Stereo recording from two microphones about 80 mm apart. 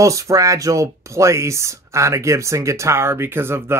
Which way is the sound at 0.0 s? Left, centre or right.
Right.